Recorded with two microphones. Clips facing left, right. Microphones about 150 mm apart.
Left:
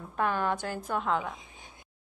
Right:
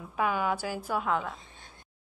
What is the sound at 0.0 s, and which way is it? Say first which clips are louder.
A woman's voice: even; 5° right (ahead or behind).